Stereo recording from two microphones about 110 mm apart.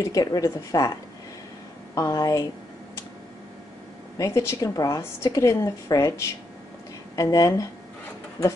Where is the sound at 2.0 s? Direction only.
35° left (ahead or behind).